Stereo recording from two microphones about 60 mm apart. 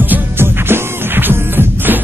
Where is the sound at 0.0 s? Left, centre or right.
Right.